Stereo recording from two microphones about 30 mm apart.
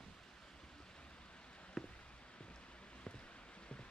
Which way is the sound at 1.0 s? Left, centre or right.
Left.